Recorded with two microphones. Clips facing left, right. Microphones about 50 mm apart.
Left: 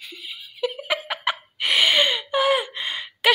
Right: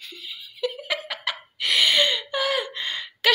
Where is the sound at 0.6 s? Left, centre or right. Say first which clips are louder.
Left 2 dB; centre.